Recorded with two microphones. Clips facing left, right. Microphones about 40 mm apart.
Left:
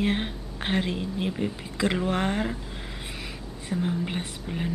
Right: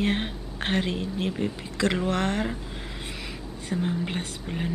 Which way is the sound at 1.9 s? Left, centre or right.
Centre.